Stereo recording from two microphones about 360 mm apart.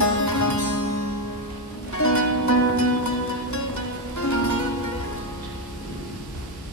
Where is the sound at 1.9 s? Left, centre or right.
Left.